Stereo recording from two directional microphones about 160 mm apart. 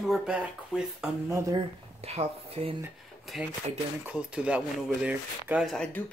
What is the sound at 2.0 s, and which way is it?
Speech, 40° right (ahead or behind).